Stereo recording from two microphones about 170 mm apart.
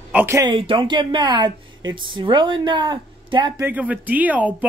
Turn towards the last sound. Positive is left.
turn(degrees=-10)  # may be behind; listen again after turning